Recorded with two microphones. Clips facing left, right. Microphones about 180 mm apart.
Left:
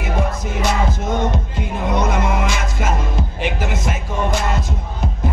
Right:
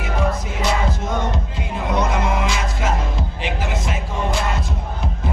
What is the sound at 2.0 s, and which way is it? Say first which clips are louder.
Music: left 1 dB; 45° left (ahead or behind).